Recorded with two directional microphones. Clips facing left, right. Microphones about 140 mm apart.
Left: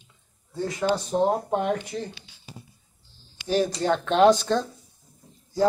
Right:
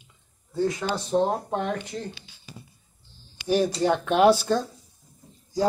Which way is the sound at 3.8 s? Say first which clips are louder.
Left 2 dB; 10° right (ahead or behind).